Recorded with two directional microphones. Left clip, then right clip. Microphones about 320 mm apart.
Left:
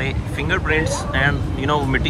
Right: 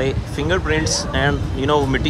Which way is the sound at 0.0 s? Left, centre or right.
Centre.